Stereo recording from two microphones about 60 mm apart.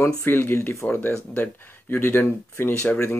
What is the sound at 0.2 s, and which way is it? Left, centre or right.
Speech, left.